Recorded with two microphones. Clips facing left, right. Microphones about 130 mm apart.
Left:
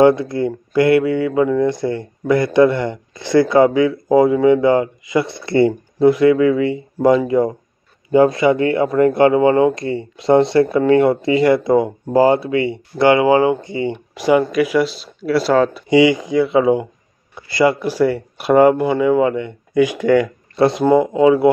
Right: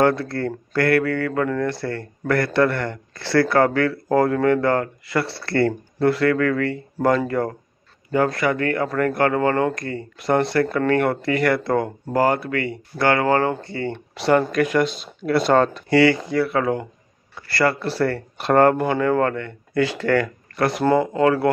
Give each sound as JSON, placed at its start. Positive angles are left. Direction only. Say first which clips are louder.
{"t": 0.0, "sound": "speech", "louder": "left 6 dB", "side_deg": 15}
{"t": 15.9, "sound": "speech", "louder": "left 4 dB", "side_deg": 15}